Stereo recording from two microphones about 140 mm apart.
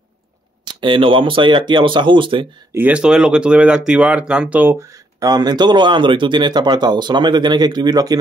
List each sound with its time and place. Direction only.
0.7 s speech: 35° right (ahead or behind)
2.7 s speech: 10° right (ahead or behind); by 8.2 s 25° right (ahead or behind)